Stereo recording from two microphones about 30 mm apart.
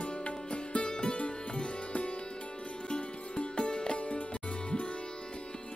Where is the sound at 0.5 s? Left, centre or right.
Left.